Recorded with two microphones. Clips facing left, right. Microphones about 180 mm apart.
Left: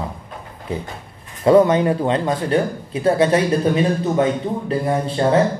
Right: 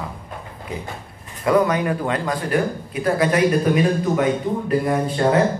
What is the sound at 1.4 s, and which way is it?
Speech, 25° left (ahead or behind).